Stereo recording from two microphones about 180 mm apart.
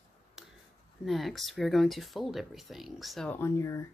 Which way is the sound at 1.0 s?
Centre (ahead or behind).